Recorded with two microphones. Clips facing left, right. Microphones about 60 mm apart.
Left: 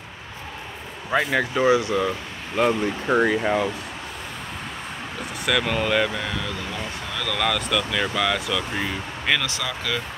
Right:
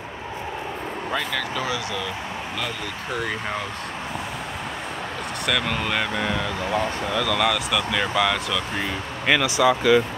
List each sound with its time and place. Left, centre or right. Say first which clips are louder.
1.1 s speech: left 6 dB; left
5.4 s speech: left 2 dB; centre